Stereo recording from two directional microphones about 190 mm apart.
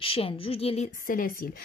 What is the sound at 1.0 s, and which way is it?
Speech, 45° left (ahead or behind).